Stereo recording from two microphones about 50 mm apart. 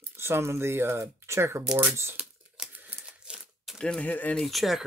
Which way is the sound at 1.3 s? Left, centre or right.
Right.